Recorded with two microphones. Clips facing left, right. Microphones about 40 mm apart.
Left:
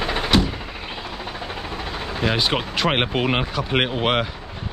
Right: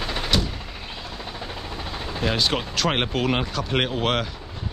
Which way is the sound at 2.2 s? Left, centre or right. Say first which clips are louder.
Left 2 dB; centre.